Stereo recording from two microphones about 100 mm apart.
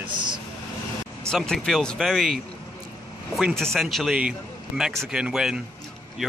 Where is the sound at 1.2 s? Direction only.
5° left (ahead or behind).